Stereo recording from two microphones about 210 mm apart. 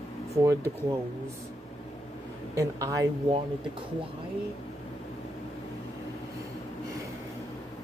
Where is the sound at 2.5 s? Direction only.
15° right (ahead or behind).